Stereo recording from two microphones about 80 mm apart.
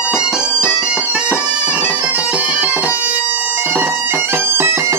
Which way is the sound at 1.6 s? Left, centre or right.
Centre.